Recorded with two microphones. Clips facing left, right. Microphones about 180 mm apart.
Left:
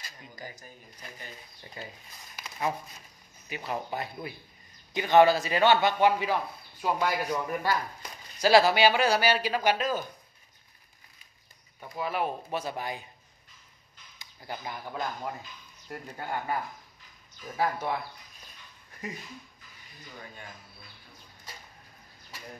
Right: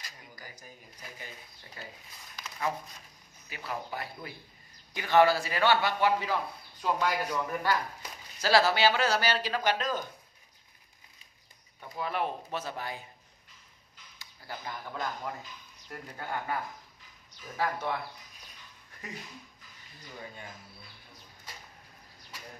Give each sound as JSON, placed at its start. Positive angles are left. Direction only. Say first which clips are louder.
{"t": 0.4, "sound": "a sound", "louder": "left 8 dB", "side_deg": 25}
{"t": 1.8, "sound": "speech", "louder": "left 4 dB", "side_deg": 20}
{"t": 3.4, "sound": "a man's voice", "louder": "left 4 dB", "side_deg": 20}
{"t": 11.8, "sound": "speech", "louder": "left 2 dB", "side_deg": 5}
{"t": 14.1, "sound": "speech", "louder": "left 3 dB", "side_deg": 15}
{"t": 17.6, "sound": "speech", "louder": "left 3 dB", "side_deg": 10}